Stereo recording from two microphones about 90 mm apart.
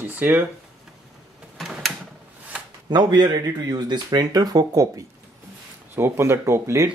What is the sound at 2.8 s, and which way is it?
Speech, 50° right (ahead or behind).